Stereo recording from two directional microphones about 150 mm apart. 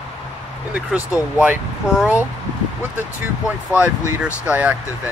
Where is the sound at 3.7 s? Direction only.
10° right (ahead or behind).